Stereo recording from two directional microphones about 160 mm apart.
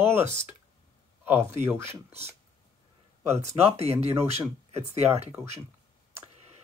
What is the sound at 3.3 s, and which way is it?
Speech, 45° right (ahead or behind).